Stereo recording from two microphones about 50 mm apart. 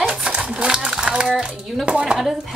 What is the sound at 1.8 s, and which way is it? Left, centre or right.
Chopping, right.